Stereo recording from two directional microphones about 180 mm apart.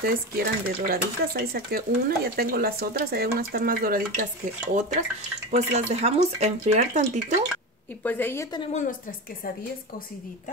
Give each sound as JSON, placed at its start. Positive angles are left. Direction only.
{"t": 0.0, "sound": "speech", "side_deg": -55}
{"t": 4.7, "sound": "stir", "side_deg": -45}
{"t": 5.5, "sound": "speech", "side_deg": -40}
{"t": 8.0, "sound": "a woman's voice", "side_deg": 10}